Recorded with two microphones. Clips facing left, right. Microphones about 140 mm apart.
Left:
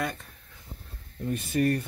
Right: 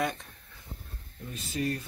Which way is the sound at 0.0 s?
Centre (ahead or behind).